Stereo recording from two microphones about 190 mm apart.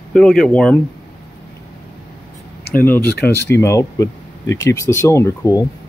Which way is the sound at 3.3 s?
15° left (ahead or behind).